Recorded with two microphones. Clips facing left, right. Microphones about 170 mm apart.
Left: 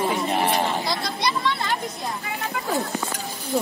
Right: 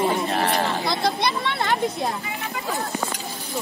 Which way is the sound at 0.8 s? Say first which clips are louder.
Right 3 dB; 55° right (ahead or behind).